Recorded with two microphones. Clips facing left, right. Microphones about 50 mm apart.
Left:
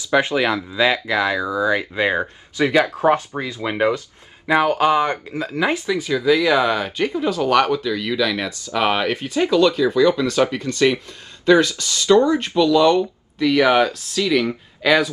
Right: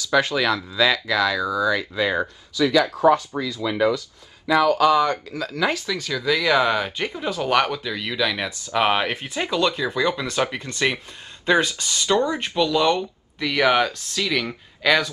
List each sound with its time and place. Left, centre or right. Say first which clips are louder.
0.0 s speech: left 2 dB; left
6.3 s speech: left 1 dB; centre; by 12.2 s right
12.5 s speech: left 5 dB; centre